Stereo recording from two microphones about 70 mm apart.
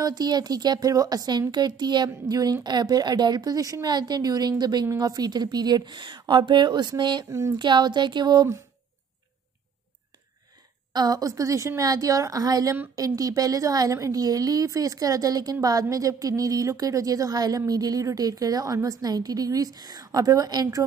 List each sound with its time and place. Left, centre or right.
0.0 s a woman's voice: right
7.2 s speech: right
7.5 s a woman's voice: right
10.9 s a woman's voice: right